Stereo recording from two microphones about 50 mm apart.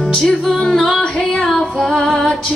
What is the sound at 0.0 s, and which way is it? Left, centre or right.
Music, centre.